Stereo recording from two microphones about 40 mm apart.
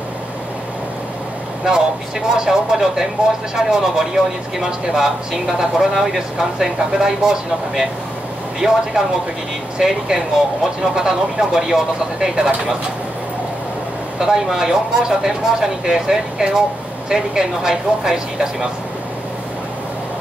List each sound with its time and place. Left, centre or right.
1.7 s speech: centre
14.2 s speech: centre